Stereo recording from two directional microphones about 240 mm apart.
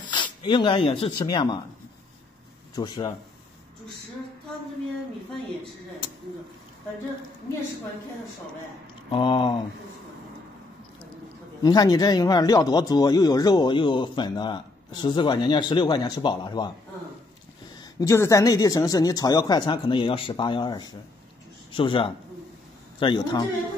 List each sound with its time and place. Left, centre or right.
0.1 s speech: centre
2.7 s speech: centre
9.1 s speech: left
11.6 s speech: centre
17.9 s speech: centre